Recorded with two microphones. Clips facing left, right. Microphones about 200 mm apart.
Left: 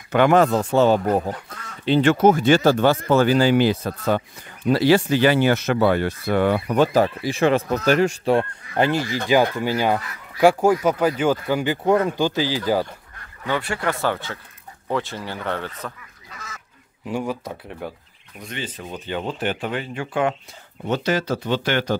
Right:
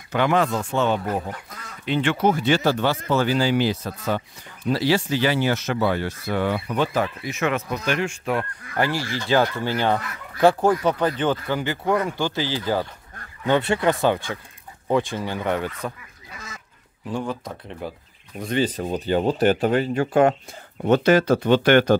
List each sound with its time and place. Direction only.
0.1 s speech: 50° left (ahead or behind); by 8.5 s 35° left (ahead or behind)
8.7 s speech: 20° left (ahead or behind)
13.5 s speech: 20° right (ahead or behind)
17.0 s speech: 10° left (ahead or behind)
18.4 s speech: 35° right (ahead or behind)
20.8 s speech: 55° right (ahead or behind)